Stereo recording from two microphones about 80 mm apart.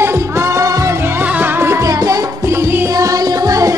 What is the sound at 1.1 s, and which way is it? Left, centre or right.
Music, right.